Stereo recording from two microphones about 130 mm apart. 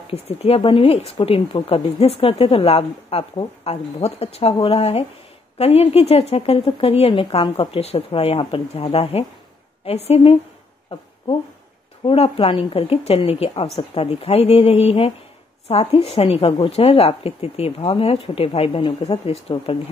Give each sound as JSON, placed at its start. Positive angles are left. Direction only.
{"t": 0.1, "sound": "speech", "side_deg": 50}
{"t": 12.1, "sound": "speech", "side_deg": 50}